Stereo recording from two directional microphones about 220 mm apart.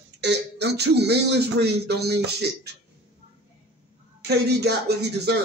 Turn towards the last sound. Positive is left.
turn(degrees=-50)  # may be behind; listen again after turning